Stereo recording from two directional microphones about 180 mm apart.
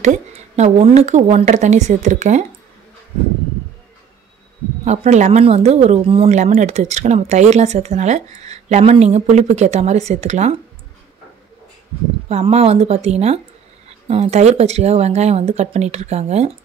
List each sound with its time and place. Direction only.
0.0 s speech: 40° right (ahead or behind)
4.8 s speech: 40° right (ahead or behind)
12.3 s speech: 35° right (ahead or behind)